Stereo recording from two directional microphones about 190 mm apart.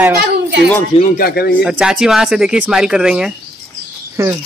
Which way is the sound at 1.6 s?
5° right (ahead or behind).